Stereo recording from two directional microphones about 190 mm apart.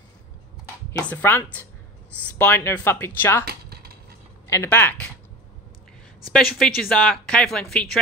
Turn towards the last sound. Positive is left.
turn(degrees=5)  # may be behind; listen again after turning